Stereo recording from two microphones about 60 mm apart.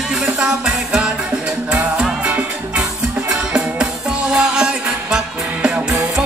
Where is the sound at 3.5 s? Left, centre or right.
Centre.